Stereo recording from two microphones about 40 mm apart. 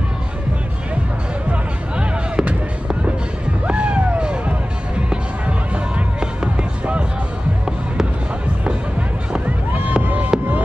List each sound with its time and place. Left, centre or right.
1.5 s music: right
6.1 s music: right
10.0 s music: right